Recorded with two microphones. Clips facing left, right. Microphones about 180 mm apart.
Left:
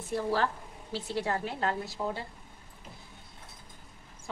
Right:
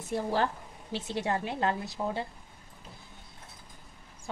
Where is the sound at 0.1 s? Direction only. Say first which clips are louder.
Even; 25° right (ahead or behind).